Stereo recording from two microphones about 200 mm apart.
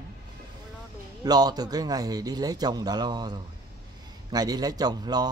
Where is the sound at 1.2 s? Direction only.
20° right (ahead or behind).